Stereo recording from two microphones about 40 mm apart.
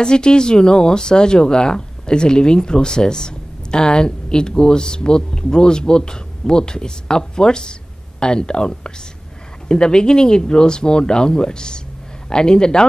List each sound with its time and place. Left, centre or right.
0.0 s speech: left